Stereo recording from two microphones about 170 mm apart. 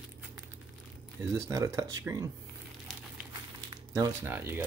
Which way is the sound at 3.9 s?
15° right (ahead or behind).